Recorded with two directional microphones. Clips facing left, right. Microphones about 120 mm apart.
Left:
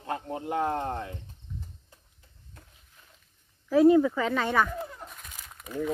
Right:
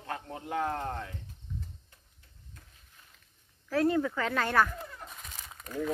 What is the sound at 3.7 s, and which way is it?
Speech, 10° left (ahead or behind).